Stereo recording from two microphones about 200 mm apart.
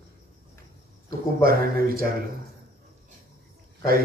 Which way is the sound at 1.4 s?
50° right (ahead or behind).